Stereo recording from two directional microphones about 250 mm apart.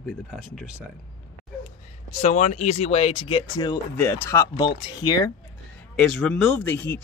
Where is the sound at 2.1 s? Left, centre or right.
Left.